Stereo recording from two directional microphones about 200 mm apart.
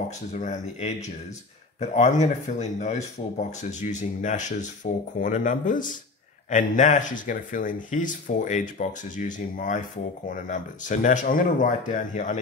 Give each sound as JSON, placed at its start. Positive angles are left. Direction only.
{"t": 0.3, "sound": "speech", "side_deg": 35}